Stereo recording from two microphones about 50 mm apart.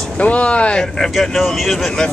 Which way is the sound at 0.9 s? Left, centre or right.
Centre.